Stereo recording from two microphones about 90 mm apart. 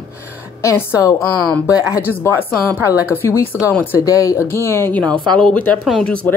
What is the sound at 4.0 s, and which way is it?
A woman's voice, 35° left (ahead or behind).